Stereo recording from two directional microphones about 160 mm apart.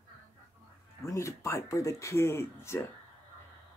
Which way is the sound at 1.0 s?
20° left (ahead or behind).